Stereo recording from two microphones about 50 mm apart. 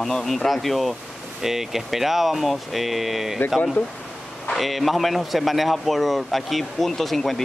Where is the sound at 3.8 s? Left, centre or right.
Left.